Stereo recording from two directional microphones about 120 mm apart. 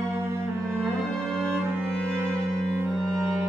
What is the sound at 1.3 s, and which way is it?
Music, 20° right (ahead or behind).